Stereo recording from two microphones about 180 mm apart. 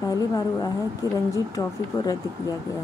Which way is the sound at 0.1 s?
20° left (ahead or behind).